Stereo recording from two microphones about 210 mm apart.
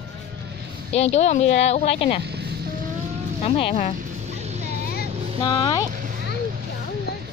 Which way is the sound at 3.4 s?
25° left (ahead or behind).